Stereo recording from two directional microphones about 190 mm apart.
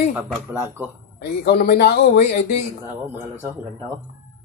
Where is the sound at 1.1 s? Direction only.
55° left (ahead or behind).